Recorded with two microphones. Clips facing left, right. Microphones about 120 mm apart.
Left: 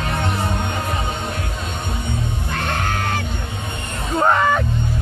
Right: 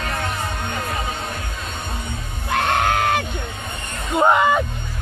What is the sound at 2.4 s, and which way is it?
Music, 55° right (ahead or behind).